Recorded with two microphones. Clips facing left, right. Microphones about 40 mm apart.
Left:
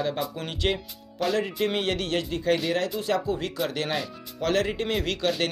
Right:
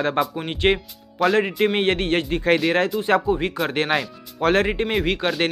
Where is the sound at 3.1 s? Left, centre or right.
Right.